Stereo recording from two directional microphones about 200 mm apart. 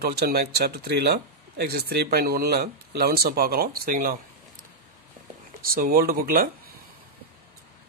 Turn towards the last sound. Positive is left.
turn(degrees=-45)  # may be behind; listen again after turning